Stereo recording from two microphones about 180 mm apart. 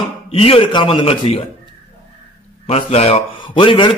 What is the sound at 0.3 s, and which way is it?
A man's voice, 30° left (ahead or behind).